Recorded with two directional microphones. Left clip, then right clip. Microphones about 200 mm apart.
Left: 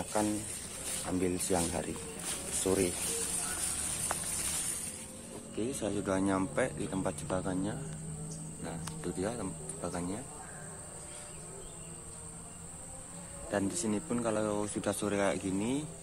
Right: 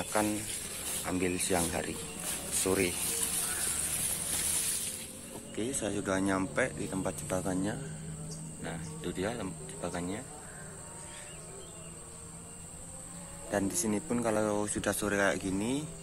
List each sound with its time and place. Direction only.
0.0 s speech: 5° right (ahead or behind)
0.9 s speech: 5° left (ahead or behind)
5.6 s speech: centre (ahead or behind)
7.3 s speech: 15° right (ahead or behind)
8.6 s speech: centre (ahead or behind)
13.5 s speech: 10° right (ahead or behind)